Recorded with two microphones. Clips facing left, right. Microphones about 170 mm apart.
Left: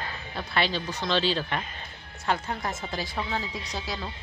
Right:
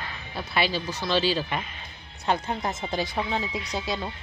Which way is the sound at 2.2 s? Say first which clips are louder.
Right 2 dB; 20° right (ahead or behind).